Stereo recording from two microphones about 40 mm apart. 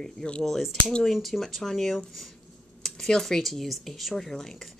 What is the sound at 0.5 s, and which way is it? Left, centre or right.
Speech, centre.